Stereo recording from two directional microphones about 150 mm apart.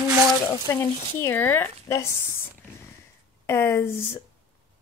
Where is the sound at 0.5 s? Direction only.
20° left (ahead or behind).